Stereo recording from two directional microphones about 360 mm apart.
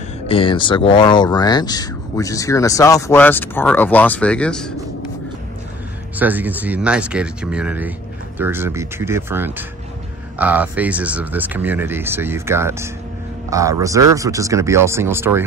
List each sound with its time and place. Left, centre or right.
0.3 s speech: centre
6.1 s speech: centre